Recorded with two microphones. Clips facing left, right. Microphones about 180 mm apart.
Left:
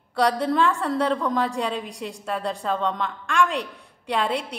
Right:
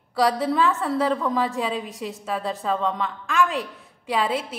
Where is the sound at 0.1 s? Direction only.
Centre (ahead or behind).